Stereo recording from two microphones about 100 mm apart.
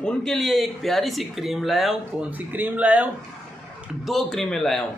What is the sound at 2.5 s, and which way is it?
Speech, 15° right (ahead or behind).